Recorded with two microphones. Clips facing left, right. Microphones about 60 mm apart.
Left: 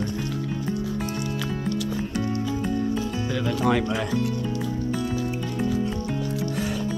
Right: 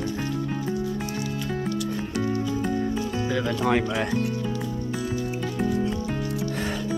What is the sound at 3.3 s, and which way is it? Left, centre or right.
Speech, right.